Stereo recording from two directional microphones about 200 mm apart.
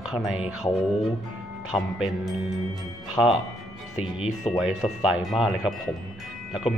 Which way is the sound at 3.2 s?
10° left (ahead or behind).